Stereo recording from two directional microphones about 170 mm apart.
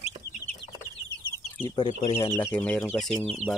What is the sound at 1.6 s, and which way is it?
Speech, 25° left (ahead or behind).